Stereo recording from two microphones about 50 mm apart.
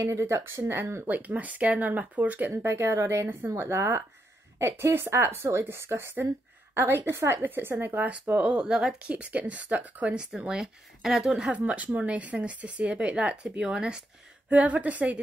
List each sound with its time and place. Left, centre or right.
0.0 s a woman's voice: right
1.0 s speech: right
2.6 s a woman's voice: right
3.3 s speech: right
3.6 s speech: right
4.6 s a woman's voice: right
7.4 s speech: right
8.5 s a woman's voice: centre
9.0 s speech: right
10.1 s a woman's voice: centre
11.5 s speech: right
13.7 s a woman's voice: centre
14.5 s speech: right